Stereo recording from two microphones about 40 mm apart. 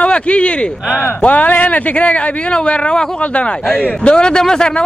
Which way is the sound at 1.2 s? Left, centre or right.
Left.